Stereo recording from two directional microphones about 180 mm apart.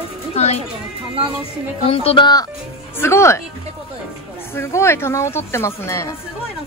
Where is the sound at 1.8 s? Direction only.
30° left (ahead or behind).